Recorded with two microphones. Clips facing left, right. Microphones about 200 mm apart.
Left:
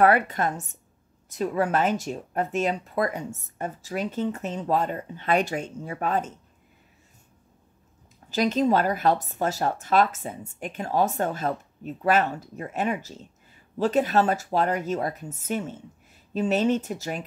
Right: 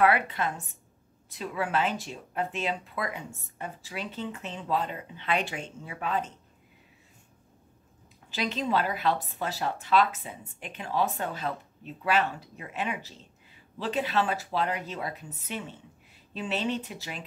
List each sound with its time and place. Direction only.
0.0 s speech: 45° left (ahead or behind)
8.3 s speech: 45° left (ahead or behind)